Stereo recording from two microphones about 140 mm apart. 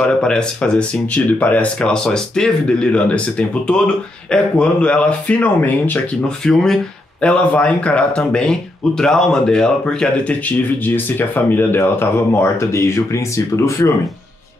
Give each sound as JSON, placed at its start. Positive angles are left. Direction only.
{"t": 0.2, "sound": "speech", "side_deg": 5}